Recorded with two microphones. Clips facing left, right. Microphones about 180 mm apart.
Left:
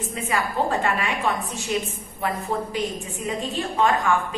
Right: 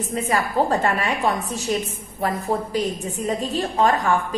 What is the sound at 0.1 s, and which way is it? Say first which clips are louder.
A woman's voice: right 4 dB; 40° right (ahead or behind).